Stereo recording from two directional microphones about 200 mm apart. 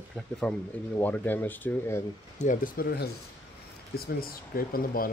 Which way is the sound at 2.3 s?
40° left (ahead or behind).